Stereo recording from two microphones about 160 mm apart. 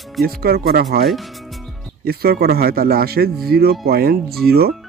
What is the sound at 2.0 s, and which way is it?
Speech, 75° right (ahead or behind).